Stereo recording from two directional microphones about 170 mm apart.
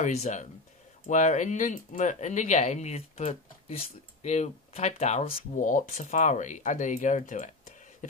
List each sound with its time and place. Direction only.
0.0 s speech: 40° left (ahead or behind)
5.5 s speech: 50° left (ahead or behind)